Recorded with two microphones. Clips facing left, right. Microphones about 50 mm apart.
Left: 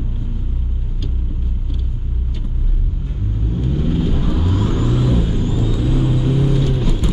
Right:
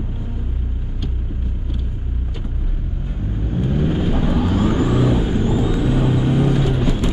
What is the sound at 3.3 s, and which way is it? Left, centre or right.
Vehicle, centre.